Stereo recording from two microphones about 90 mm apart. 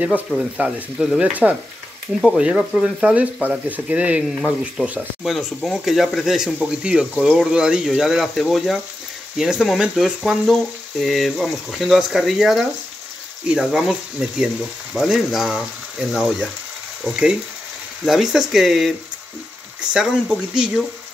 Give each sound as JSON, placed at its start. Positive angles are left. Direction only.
{"t": 0.3, "sound": "speech", "side_deg": -5}